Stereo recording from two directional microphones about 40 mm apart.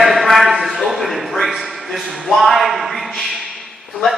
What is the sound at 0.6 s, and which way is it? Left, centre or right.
Speech, centre.